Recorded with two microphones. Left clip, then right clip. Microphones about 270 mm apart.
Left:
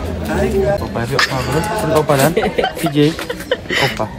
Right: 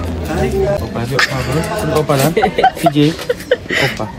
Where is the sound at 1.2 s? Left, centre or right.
Centre.